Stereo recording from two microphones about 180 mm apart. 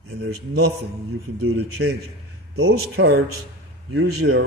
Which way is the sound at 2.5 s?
65° right (ahead or behind).